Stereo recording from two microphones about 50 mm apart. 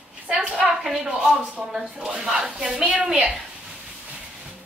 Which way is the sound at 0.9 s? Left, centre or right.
Centre.